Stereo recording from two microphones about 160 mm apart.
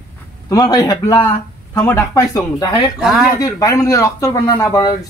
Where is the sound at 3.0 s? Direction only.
Centre (ahead or behind).